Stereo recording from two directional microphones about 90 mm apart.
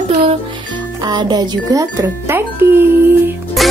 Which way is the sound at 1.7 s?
40° right (ahead or behind).